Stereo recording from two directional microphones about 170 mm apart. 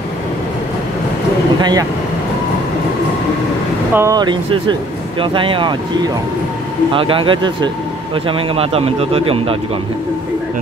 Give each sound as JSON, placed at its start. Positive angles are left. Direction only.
{"t": 1.6, "sound": "speech", "side_deg": -25}
{"t": 3.9, "sound": "speech", "side_deg": -20}
{"t": 6.9, "sound": "speech", "side_deg": -30}